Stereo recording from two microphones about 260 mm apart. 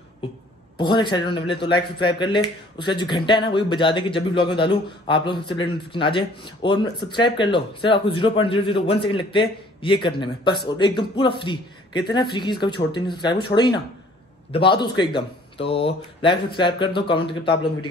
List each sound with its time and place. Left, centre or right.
0.7 s a man's voice: centre